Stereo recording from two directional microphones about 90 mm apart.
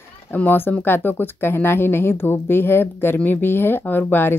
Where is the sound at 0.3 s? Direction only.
20° left (ahead or behind).